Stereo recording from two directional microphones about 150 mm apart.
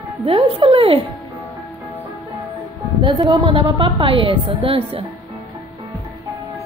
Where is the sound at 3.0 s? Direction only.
30° right (ahead or behind).